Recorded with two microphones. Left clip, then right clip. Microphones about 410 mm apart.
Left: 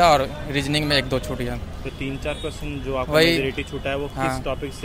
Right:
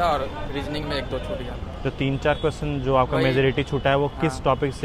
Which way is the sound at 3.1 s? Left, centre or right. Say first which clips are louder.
Left 5 dB; left.